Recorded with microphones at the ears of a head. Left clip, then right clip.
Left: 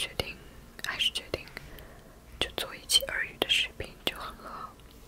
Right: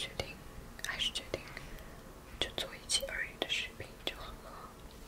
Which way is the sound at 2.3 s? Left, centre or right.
Left.